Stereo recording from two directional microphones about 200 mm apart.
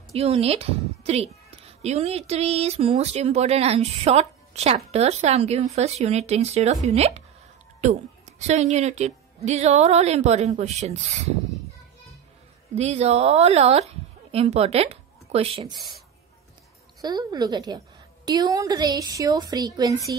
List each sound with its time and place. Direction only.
0.1 s speech: 30° right (ahead or behind)
12.7 s speech: 30° right (ahead or behind)
17.0 s a woman's voice: 20° right (ahead or behind)